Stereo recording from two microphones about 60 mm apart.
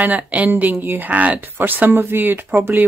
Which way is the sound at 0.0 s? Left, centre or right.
Right.